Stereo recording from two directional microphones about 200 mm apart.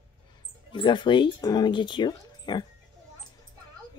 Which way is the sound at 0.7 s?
25° left (ahead or behind).